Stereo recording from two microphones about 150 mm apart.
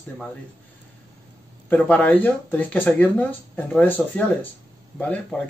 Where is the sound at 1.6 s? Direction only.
10° left (ahead or behind).